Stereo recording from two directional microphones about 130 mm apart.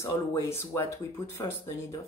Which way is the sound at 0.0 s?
20° left (ahead or behind).